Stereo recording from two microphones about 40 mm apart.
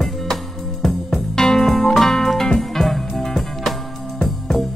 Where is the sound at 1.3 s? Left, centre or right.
Centre.